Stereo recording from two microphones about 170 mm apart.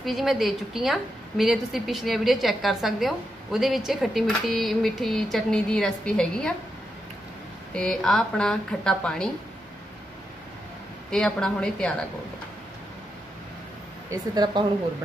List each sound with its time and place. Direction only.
0.0 s a woman's voice: centre (ahead or behind)
7.7 s a woman's voice: 5° left (ahead or behind)
11.1 s a woman's voice: 5° left (ahead or behind)
14.3 s speech: 25° right (ahead or behind)